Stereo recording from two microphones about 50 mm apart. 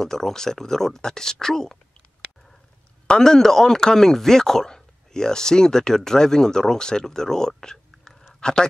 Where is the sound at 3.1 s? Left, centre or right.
Centre.